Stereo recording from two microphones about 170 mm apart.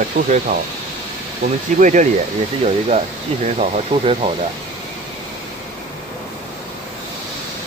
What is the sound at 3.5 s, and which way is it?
Speech, 40° right (ahead or behind).